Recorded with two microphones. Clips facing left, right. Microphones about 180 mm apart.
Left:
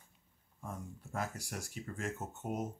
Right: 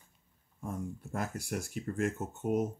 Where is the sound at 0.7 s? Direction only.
55° right (ahead or behind).